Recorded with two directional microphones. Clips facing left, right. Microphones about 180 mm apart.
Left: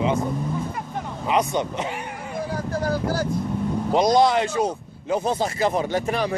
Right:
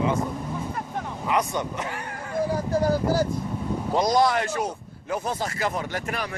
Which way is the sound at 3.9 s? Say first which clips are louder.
Left 3 dB; 20° left (ahead or behind).